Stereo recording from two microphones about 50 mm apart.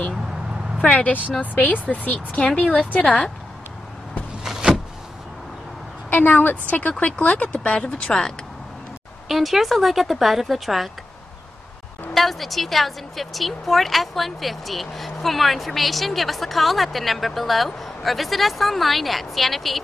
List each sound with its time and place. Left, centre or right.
0.9 s speech: left
4.4 s power windows: centre
6.0 s a woman's voice: left; by 8.3 s centre
9.3 s a woman's voice: centre
12.1 s a woman's voice: centre